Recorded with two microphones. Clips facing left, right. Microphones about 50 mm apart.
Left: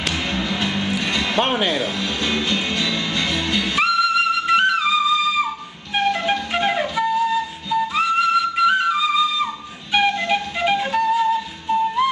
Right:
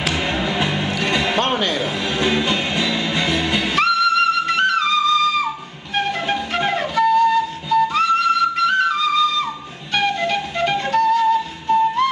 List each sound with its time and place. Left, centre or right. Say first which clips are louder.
0.1 s music: right 3 dB; centre
1.4 s speech: even; centre
2.0 s music: right 3 dB; centre
3.7 s flute: right 1 dB; centre
5.9 s music: left 1 dB; centre
6.5 s flute: right 1 dB; centre
11.3 s music: right 3 dB; centre
12.0 s flute: right 1 dB; centre